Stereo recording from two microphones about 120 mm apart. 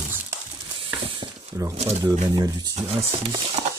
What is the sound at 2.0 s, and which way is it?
Speech, 35° right (ahead or behind).